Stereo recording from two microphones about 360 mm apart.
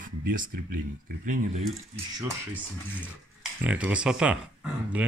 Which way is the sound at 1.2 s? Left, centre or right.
Right.